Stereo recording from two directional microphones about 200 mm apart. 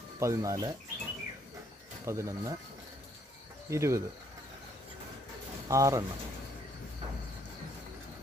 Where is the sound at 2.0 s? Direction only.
15° right (ahead or behind).